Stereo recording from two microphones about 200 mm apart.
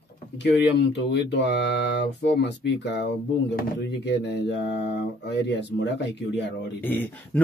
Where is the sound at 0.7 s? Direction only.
60° left (ahead or behind).